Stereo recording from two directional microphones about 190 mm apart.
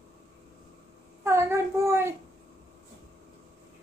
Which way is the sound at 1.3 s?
15° right (ahead or behind).